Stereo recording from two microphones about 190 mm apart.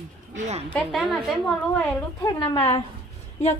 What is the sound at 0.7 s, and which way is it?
Speech, centre (ahead or behind).